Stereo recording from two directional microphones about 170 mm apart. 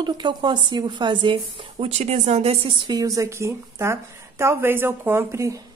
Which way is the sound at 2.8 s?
20° right (ahead or behind).